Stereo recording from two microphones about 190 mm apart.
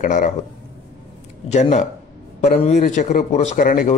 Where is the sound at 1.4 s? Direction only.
35° left (ahead or behind).